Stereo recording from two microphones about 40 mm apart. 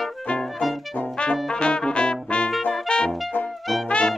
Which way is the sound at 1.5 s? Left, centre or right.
Left.